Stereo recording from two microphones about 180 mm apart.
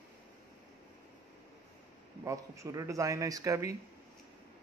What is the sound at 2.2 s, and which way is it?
A man's voice, 15° right (ahead or behind).